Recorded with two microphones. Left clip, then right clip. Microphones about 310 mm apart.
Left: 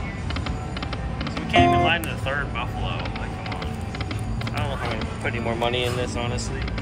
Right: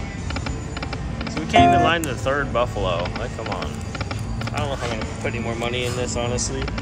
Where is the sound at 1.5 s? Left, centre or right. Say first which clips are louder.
Right 3 dB; centre.